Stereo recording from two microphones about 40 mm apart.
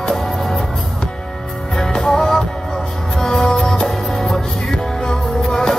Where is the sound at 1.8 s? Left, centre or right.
Centre.